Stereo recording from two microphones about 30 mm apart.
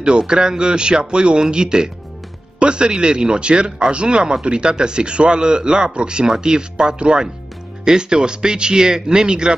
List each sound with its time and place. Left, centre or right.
0.3 s speech: right